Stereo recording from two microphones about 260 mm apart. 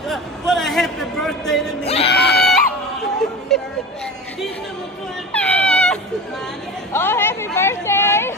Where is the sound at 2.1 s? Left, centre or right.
Left.